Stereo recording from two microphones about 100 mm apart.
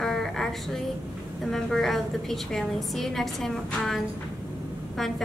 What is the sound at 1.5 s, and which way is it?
A woman's voice, 5° left (ahead or behind).